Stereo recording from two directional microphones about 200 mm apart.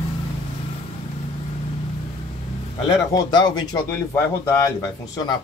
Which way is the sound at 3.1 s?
20° left (ahead or behind).